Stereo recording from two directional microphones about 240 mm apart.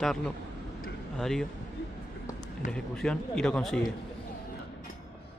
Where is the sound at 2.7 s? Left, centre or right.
Centre.